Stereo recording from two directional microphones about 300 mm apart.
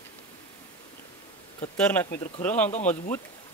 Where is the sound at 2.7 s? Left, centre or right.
Left.